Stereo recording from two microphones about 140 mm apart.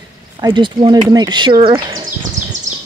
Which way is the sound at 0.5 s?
30° right (ahead or behind).